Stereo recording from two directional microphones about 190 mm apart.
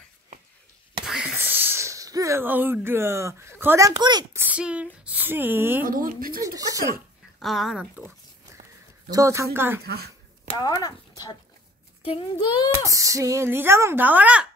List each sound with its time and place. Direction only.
1.0 s a sound: 5° right (ahead or behind); by 4.4 s 20° right (ahead or behind)
4.4 s speech: 5° right (ahead or behind)
5.9 s speech: 45° right (ahead or behind)
6.4 s speech: 20° right (ahead or behind)
7.3 s speech: centre (ahead or behind)
9.1 s speech: 15° right (ahead or behind)
9.8 s a sound: 55° right (ahead or behind)
10.6 s a child's voice: 20° left (ahead or behind)
12.9 s speech: 15° right (ahead or behind)